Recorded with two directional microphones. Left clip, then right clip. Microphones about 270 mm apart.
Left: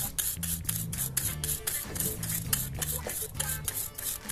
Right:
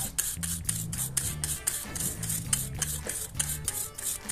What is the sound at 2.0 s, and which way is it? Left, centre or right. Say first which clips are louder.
Stir: right 1 dB; centre.